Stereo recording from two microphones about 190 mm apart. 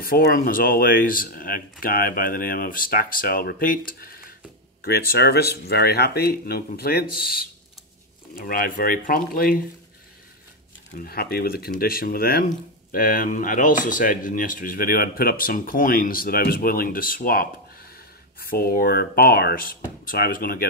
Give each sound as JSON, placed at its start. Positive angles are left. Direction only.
{"t": 0.0, "sound": "speech", "side_deg": 50}
{"t": 11.1, "sound": "speech", "side_deg": 55}